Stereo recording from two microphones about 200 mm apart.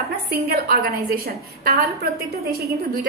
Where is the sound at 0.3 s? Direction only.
50° right (ahead or behind).